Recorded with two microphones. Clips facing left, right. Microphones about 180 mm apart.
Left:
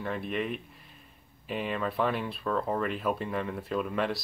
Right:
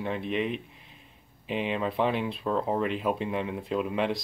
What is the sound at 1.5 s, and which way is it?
Speech, 20° right (ahead or behind).